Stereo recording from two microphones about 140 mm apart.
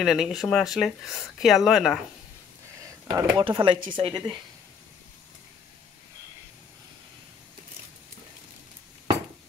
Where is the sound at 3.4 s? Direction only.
35° right (ahead or behind).